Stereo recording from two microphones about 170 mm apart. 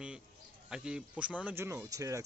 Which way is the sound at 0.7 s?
5° right (ahead or behind).